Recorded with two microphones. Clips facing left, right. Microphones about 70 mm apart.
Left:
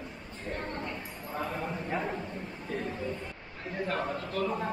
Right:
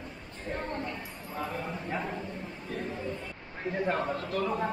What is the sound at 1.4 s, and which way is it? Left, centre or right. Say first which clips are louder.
A man's voice: even; centre.